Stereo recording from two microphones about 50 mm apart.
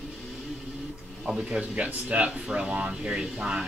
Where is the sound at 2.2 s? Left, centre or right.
Centre.